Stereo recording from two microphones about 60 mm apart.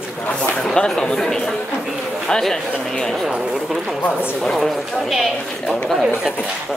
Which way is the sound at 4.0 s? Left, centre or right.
Left.